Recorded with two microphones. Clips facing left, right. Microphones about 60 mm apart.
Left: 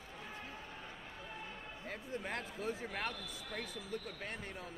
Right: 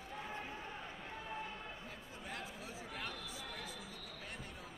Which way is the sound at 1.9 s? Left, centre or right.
Left.